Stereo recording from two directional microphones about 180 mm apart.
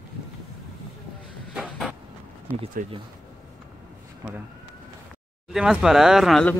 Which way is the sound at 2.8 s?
45° right (ahead or behind).